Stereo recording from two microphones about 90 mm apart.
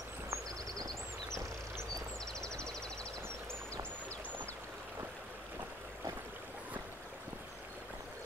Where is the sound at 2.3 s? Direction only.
10° left (ahead or behind).